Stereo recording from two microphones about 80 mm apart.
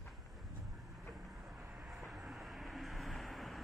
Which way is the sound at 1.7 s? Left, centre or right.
Centre.